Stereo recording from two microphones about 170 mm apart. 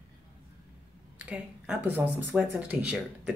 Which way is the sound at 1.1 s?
5° right (ahead or behind).